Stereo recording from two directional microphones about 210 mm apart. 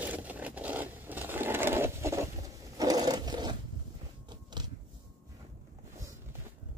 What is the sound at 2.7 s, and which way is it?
Sewing machine, 15° right (ahead or behind).